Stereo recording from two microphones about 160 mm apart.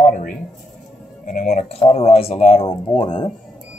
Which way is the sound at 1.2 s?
55° left (ahead or behind).